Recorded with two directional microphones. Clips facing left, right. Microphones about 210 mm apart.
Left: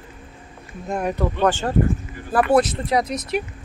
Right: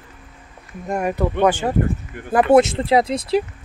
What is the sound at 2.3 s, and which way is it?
Speech, 25° right (ahead or behind).